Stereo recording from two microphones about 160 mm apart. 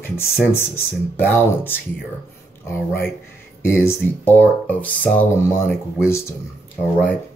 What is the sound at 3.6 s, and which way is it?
Speech, 15° left (ahead or behind).